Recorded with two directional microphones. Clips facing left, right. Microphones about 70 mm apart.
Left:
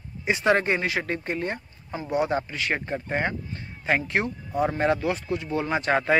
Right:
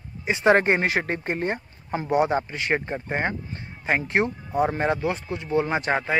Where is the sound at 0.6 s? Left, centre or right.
Right.